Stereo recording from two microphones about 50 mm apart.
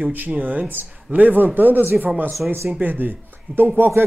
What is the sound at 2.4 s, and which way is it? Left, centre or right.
Speech, centre.